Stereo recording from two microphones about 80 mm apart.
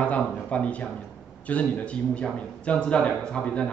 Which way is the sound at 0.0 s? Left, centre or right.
Centre.